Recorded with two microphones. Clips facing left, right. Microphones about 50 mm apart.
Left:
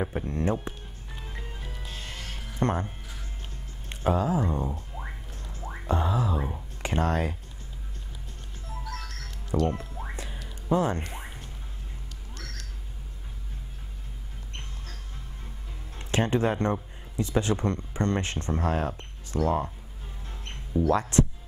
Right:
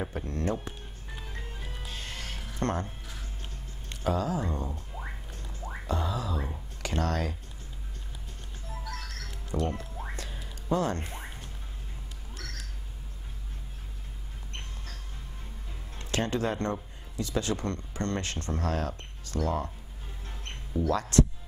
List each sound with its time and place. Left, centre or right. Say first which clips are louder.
0.0 s speech: left 4 dB; centre
1.6 s music: even; centre
2.5 s speech: left 3 dB; centre
3.9 s speech: left 4 dB; left
4.7 s rodents: left 1 dB; centre
5.9 s a sound: left 5 dB; left
8.8 s music: left 1 dB; centre
9.5 s music: left 5 dB; centre
10.1 s a sound: left 2 dB; centre
10.7 s speech: left 3 dB; centre
11.1 s a sound: left 1 dB; centre
16.0 s speech: left 4 dB; left
20.9 s speech: left 1 dB; left